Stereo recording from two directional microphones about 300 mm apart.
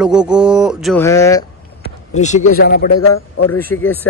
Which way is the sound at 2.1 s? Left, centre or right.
Left.